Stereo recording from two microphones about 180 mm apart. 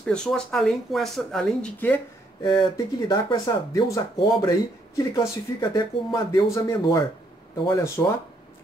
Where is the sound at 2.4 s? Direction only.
25° left (ahead or behind).